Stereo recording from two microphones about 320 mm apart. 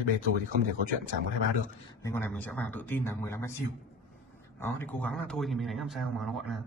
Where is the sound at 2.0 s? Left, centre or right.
Centre.